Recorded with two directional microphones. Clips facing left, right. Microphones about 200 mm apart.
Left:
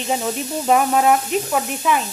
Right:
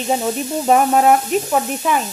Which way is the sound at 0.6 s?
40° right (ahead or behind).